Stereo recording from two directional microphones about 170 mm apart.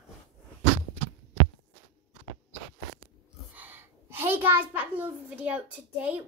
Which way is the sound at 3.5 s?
10° right (ahead or behind).